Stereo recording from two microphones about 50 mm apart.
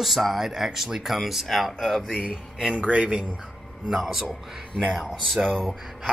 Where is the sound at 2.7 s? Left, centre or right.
Right.